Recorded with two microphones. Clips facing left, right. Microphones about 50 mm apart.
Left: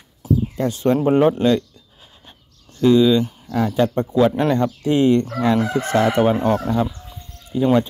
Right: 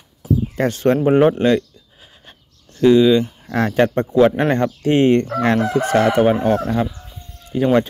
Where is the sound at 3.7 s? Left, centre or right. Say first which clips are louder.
Right 4 dB; right.